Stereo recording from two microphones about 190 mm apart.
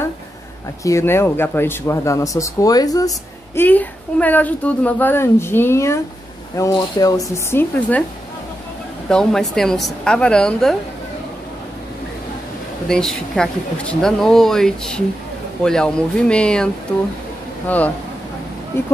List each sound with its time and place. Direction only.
0.8 s a woman's voice: 15° left (ahead or behind)
3.5 s a woman's voice: 10° left (ahead or behind)
9.1 s speech: centre (ahead or behind)
12.8 s a woman's voice: centre (ahead or behind)